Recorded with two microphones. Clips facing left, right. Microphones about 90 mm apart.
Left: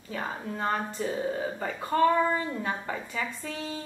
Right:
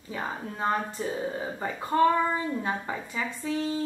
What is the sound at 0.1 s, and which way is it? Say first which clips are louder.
A woman's voice: even; 15° right (ahead or behind).